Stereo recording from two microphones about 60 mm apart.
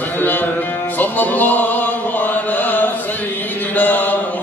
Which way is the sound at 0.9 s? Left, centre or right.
Left.